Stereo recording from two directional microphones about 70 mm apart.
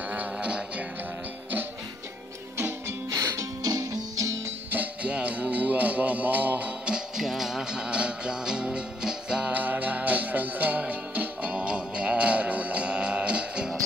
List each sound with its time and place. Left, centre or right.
0.1 s music: centre
3.1 s music: right
4.6 s music: right
6.9 s music: centre